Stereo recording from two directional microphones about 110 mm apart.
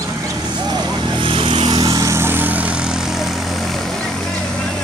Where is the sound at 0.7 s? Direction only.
50° right (ahead or behind); by 3.6 s 5° right (ahead or behind).